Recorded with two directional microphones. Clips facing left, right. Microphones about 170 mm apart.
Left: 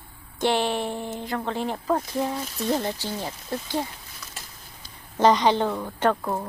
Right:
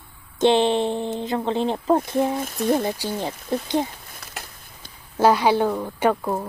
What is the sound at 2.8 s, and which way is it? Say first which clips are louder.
A woman's voice: right 4 dB; 10° right (ahead or behind).